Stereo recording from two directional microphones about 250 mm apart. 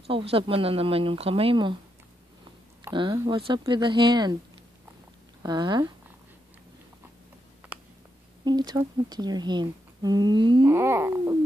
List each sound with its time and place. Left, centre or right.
0.1 s speech: right
2.8 s speech: centre
5.4 s speech: centre
7.7 s a sound: centre
8.5 s speech: centre